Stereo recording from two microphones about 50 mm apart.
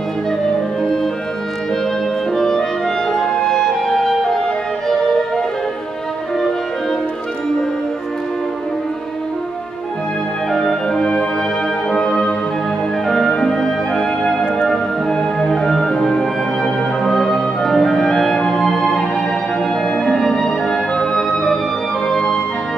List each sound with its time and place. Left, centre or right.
2.3 s clarinet: centre
3.3 s music: centre
10.5 s music: centre
13.0 s music: centre